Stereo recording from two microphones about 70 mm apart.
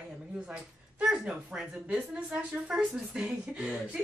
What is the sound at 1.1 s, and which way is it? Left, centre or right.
A woman's voice, centre.